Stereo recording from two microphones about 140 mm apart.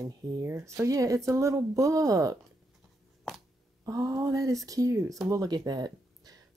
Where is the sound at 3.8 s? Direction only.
25° right (ahead or behind).